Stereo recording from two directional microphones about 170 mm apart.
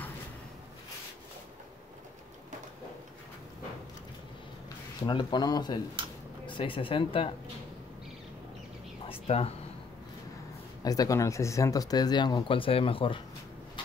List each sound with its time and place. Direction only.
5.0 s speech: 25° left (ahead or behind)
9.1 s a sound: 35° left (ahead or behind)
10.8 s speech: 20° left (ahead or behind)